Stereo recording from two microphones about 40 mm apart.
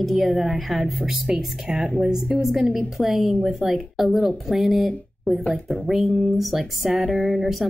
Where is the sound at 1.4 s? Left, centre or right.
Right.